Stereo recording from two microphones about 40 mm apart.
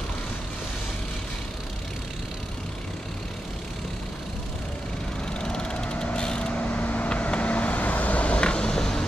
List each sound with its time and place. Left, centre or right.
5.4 s a sound: centre
6.1 s vehicle: left
6.6 s vehicle: left; by 9.0 s centre